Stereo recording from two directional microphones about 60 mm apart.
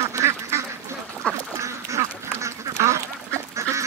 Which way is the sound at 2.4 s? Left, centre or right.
Right.